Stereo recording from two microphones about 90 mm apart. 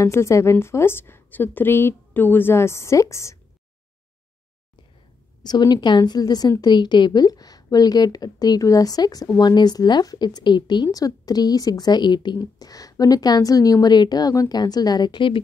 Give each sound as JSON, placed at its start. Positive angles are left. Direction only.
{"t": 0.0, "sound": "a woman's voice", "side_deg": 35}
{"t": 5.4, "sound": "a woman's voice", "side_deg": 50}
{"t": 10.9, "sound": "a woman's voice", "side_deg": 40}
{"t": 12.4, "sound": "a woman's voice", "side_deg": 45}